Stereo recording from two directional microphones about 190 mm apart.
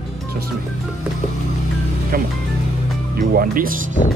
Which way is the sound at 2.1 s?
50° right (ahead or behind).